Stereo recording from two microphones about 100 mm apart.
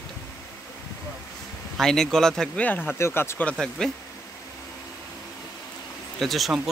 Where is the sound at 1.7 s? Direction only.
5° left (ahead or behind).